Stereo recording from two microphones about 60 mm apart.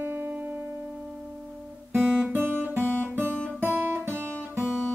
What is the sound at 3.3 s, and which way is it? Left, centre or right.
Guitar, centre.